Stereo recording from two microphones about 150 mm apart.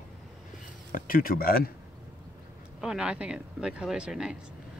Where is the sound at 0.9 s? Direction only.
70° left (ahead or behind).